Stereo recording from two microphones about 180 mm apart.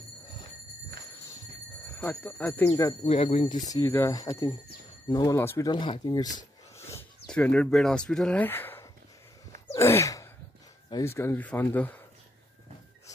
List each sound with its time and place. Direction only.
2.0 s speech: 10° left (ahead or behind)
2.7 s speech: 20° left (ahead or behind)
3.1 s speech: 35° left (ahead or behind)
3.7 s speech: 15° left (ahead or behind)
5.7 s a sound: 25° left (ahead or behind)
7.2 s speech: 5° left (ahead or behind)
9.8 s a sound: 15° left (ahead or behind)
10.9 s speech: 15° left (ahead or behind)